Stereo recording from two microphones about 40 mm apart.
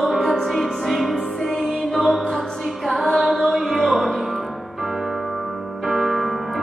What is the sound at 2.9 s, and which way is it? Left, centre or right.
Music, centre.